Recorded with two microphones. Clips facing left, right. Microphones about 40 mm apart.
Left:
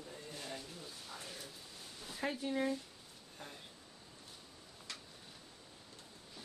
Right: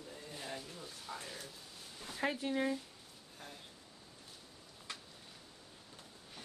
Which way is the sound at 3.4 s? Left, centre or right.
Centre.